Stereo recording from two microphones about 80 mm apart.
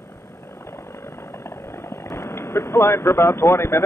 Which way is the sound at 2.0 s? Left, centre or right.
Left.